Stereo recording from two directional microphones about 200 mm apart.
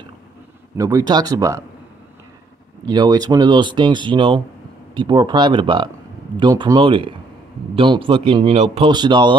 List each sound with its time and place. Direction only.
0.7 s speech: 15° right (ahead or behind)
2.9 s a man's voice: 20° right (ahead or behind)